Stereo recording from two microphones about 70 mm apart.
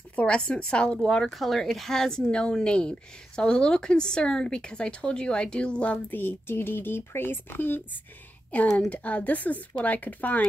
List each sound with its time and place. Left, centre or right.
0.1 s a woman's voice: left